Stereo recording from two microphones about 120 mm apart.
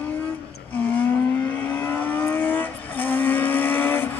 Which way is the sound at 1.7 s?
15° left (ahead or behind).